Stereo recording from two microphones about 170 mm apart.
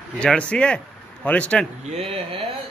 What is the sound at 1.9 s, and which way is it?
Speech, 35° right (ahead or behind).